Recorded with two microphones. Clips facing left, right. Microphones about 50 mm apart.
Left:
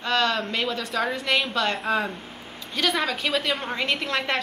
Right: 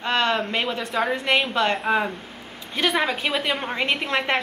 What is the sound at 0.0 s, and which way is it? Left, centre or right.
A woman's voice, right.